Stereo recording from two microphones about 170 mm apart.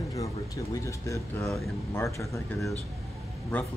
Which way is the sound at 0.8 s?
20° left (ahead or behind).